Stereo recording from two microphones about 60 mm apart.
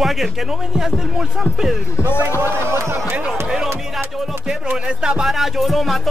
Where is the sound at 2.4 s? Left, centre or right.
Right.